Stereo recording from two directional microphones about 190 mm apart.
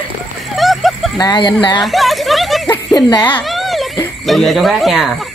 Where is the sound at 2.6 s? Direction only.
20° left (ahead or behind).